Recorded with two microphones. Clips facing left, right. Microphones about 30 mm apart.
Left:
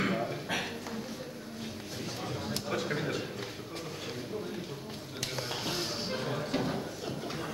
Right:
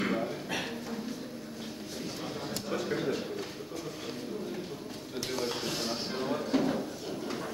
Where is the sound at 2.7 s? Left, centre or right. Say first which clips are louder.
Right 2 dB; left.